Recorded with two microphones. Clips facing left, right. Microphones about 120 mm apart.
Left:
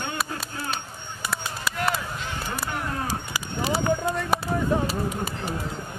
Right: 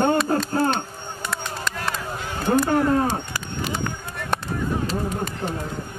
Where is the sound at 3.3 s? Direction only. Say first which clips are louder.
Left 2 dB; 10° left (ahead or behind).